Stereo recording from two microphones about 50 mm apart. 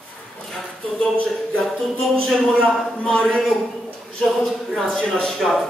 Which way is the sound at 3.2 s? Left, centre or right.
Centre.